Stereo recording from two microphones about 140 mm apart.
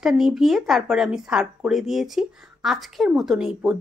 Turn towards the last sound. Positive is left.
turn(degrees=-5)  # may be behind; listen again after turning